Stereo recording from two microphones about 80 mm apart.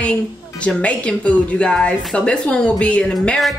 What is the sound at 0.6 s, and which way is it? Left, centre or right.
A woman's voice, centre.